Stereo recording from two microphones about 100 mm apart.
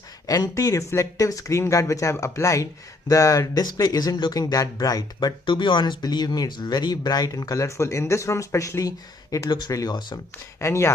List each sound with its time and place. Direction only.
0.3 s speech: 35° left (ahead or behind)
5.4 s speech: 55° left (ahead or behind)
10.6 s speech: 30° left (ahead or behind)